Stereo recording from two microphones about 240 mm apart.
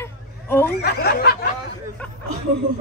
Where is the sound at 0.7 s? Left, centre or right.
Left.